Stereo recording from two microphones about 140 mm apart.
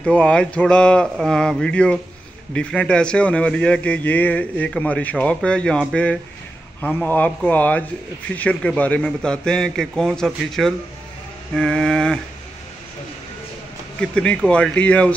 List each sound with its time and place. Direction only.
0.0 s a man's voice: 10° left (ahead or behind)
13.9 s a man's voice: 10° left (ahead or behind)